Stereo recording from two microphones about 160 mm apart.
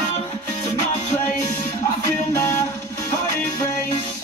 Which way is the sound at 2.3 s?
20° left (ahead or behind).